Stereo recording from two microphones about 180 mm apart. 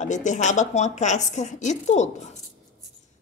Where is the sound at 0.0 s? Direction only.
40° left (ahead or behind).